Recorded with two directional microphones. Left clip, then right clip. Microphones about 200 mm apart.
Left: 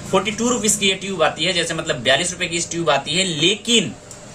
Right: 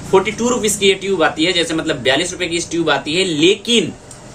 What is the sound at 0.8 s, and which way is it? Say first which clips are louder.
A man's voice: right 5 dB; 5° left (ahead or behind).